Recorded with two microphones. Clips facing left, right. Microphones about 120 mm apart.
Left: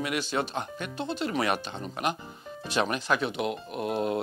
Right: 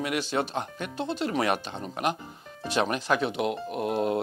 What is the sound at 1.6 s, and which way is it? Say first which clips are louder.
Speech: right 1 dB; 25° right (ahead or behind).